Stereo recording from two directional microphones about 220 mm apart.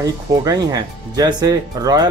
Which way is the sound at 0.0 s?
15° right (ahead or behind).